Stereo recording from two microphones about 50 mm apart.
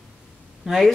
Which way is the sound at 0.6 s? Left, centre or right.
Centre.